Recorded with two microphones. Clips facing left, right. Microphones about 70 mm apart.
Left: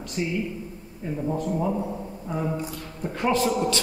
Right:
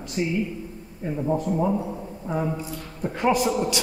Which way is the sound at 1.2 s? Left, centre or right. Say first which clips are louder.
Right 3 dB; centre.